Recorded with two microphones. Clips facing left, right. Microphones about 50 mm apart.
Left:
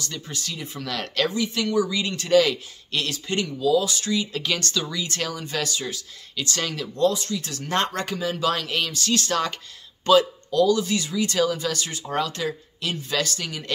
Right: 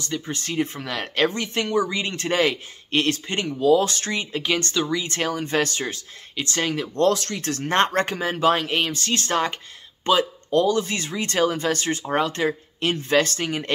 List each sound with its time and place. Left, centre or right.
0.0 s speech: right
0.8 s speech: right
1.3 s speech: right
4.3 s speech: right
7.0 s speech: right